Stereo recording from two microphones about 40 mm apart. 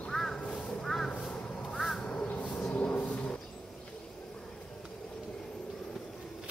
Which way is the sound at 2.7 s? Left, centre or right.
Left.